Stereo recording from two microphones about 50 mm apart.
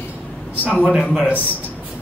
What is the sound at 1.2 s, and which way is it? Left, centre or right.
Speech, left.